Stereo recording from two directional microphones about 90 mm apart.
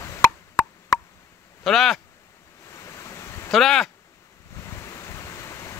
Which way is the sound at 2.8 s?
35° left (ahead or behind).